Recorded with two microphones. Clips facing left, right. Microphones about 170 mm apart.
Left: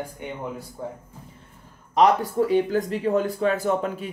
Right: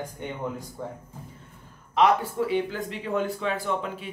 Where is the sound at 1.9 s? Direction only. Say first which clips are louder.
Left 3 dB; 40° left (ahead or behind).